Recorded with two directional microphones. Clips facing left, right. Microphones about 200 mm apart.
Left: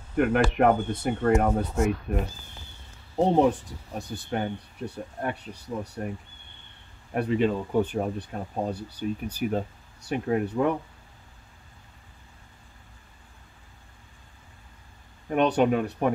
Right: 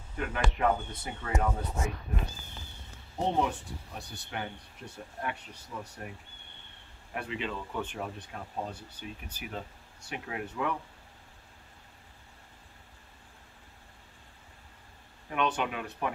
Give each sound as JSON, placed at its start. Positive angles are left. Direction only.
{"t": 0.1, "sound": "speech", "side_deg": 60}
{"t": 3.3, "sound": "speech", "side_deg": 40}
{"t": 7.2, "sound": "speech", "side_deg": 45}
{"t": 15.2, "sound": "speech", "side_deg": 40}